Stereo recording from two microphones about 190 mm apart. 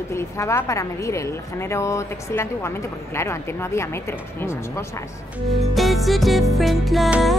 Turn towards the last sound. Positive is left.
turn(degrees=0)  # may be behind; listen again after turning